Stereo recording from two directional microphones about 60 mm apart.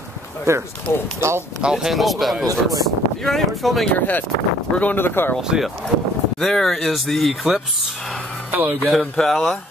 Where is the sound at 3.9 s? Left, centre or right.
Left.